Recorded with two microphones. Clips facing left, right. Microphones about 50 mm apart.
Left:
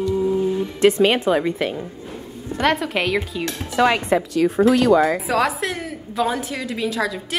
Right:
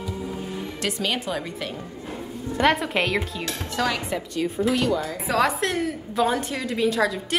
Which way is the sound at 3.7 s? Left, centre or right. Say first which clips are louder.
Left 8 dB; left.